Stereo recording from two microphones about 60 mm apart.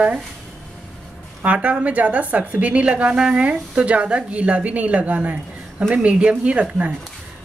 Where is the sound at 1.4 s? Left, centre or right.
Right.